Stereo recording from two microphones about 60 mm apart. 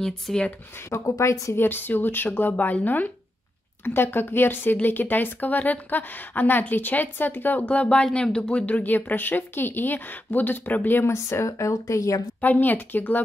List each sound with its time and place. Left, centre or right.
0.3 s speech: centre
0.8 s a woman's voice: left
1.6 s speech: left
3.8 s speech: left
11.1 s speech: left
12.4 s speech: left